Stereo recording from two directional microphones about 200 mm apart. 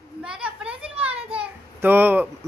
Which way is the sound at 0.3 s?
5° right (ahead or behind).